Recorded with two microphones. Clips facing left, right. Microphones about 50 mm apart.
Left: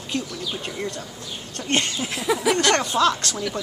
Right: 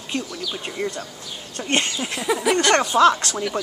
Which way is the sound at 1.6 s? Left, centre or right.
Centre.